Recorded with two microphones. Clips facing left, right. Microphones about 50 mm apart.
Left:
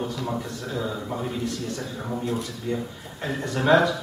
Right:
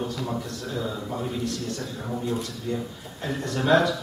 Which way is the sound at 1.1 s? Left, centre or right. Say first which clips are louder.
Even; centre.